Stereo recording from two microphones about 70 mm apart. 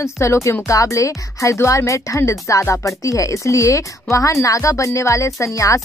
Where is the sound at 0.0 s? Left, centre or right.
Left.